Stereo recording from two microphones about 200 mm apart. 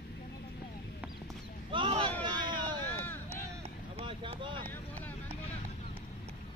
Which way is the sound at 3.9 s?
30° right (ahead or behind).